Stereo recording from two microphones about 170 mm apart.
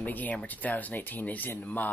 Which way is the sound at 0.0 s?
10° left (ahead or behind).